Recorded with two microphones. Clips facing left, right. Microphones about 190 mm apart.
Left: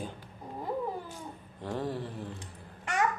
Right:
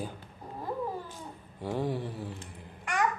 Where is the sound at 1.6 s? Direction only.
10° right (ahead or behind).